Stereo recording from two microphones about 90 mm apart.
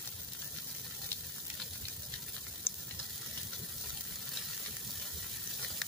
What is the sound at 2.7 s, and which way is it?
Frying, 25° left (ahead or behind).